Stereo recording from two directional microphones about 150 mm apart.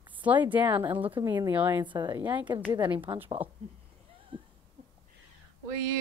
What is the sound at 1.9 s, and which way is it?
Speech, 30° right (ahead or behind).